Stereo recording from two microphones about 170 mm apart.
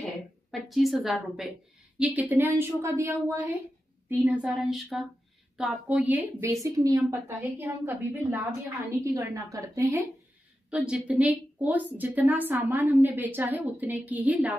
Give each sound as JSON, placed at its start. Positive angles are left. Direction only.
{"t": 0.0, "sound": "a woman's voice", "side_deg": 0}
{"t": 10.7, "sound": "a woman's voice", "side_deg": -5}